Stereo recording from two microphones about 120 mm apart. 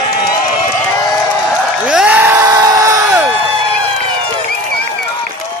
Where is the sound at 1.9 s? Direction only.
10° right (ahead or behind).